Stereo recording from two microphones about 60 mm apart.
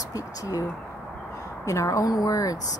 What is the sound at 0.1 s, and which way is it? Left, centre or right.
Speech, left.